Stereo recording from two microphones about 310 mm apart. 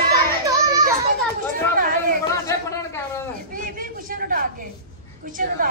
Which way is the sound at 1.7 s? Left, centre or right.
Right.